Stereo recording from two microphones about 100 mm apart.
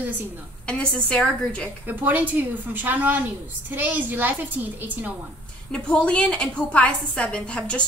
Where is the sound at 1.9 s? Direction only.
20° right (ahead or behind).